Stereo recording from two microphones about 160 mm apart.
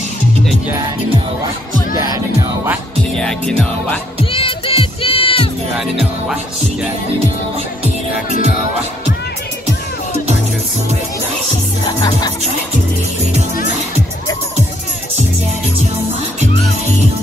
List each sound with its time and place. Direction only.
2.1 s speech: 15° right (ahead or behind)
3.2 s music: 5° left (ahead or behind)
4.2 s music: 35° left (ahead or behind)
5.8 s music: 5° right (ahead or behind)
11.8 s music: 25° left (ahead or behind)